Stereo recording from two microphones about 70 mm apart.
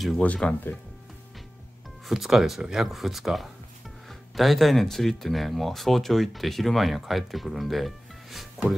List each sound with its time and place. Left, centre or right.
0.2 s speech: centre
2.0 s speech: centre